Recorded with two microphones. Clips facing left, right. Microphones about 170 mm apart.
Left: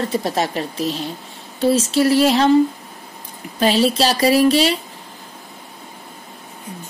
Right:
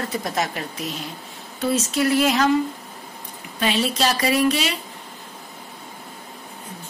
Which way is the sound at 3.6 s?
35° left (ahead or behind).